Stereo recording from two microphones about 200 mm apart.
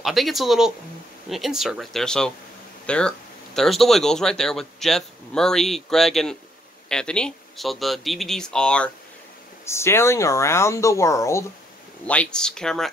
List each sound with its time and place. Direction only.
0.0 s speech: centre (ahead or behind)